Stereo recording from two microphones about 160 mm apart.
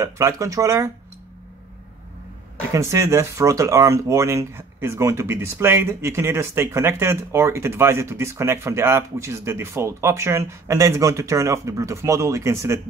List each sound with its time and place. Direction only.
0.0 s speech: 20° right (ahead or behind)
2.7 s speech: 20° right (ahead or behind)